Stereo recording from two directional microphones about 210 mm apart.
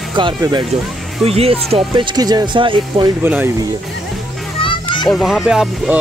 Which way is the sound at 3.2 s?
10° right (ahead or behind).